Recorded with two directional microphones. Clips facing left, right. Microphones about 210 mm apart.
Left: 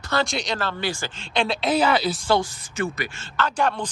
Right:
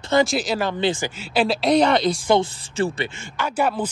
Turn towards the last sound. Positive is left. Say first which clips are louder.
# right 1 dB
turn(degrees=-5)  # may be behind; listen again after turning